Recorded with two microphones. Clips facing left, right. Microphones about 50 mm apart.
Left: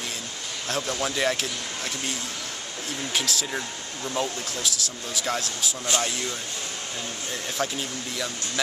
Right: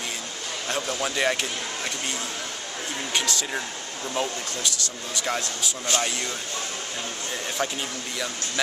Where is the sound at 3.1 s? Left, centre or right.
Centre.